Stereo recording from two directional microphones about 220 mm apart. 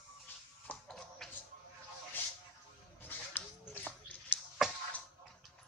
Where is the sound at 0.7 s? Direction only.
5° left (ahead or behind).